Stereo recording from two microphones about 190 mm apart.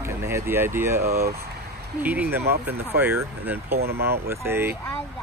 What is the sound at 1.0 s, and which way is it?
Speech, 55° right (ahead or behind).